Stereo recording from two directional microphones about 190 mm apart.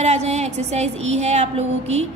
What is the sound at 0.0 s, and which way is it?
A woman's voice, 35° right (ahead or behind).